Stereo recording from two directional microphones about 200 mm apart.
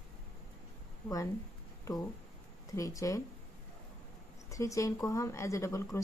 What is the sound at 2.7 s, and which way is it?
Speech, 15° left (ahead or behind).